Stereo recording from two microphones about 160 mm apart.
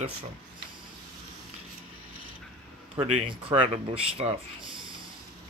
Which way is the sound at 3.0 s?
35° right (ahead or behind).